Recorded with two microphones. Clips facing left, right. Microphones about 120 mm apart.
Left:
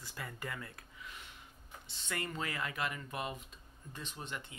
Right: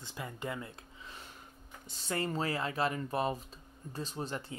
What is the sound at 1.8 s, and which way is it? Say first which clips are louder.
Speech: right 6 dB; 40° right (ahead or behind).